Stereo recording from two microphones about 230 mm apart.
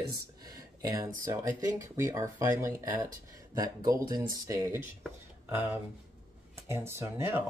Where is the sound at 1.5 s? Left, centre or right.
Right.